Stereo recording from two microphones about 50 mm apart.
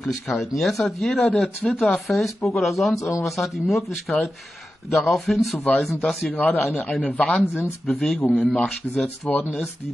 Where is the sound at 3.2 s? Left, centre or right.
Centre.